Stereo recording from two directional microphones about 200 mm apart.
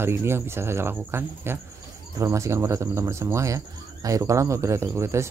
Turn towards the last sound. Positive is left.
turn(degrees=-15)  # may be behind; listen again after turning